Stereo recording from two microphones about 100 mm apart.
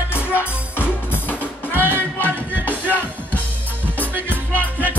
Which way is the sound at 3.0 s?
15° left (ahead or behind).